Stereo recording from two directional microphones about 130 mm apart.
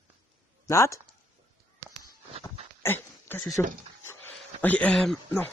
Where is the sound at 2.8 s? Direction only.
15° left (ahead or behind).